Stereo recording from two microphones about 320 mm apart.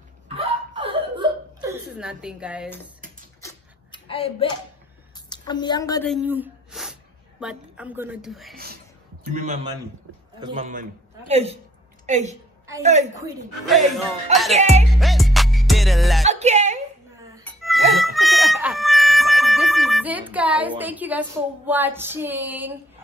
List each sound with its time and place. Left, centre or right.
0.7 s whimper: centre
3.3 s a sound: centre
6.0 s speech: centre
9.3 s a man's voice: right
13.7 s speech: centre
14.5 s a man's voice: right
15.0 s music: centre
16.3 s music: right
17.5 s music: centre